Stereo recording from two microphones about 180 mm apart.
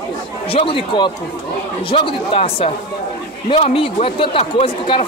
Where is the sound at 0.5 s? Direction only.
30° left (ahead or behind).